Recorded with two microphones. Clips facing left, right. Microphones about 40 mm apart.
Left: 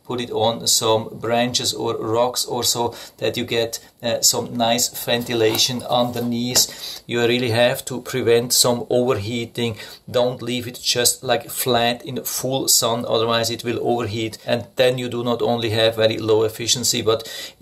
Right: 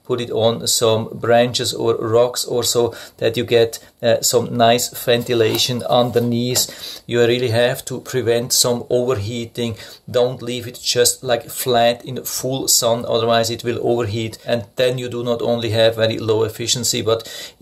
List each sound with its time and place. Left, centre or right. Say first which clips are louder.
0.1 s speech: right 3 dB; centre
5.0 s speech: right 3 dB; centre
7.1 s speech: right 3 dB; centre